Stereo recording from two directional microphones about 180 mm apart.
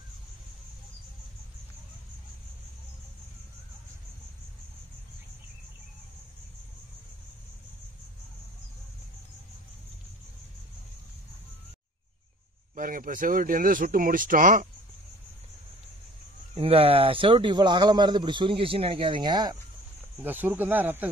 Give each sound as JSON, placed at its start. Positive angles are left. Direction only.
{"t": 12.7, "sound": "speech", "side_deg": -50}
{"t": 16.5, "sound": "speech", "side_deg": -35}
{"t": 20.2, "sound": "speech", "side_deg": -10}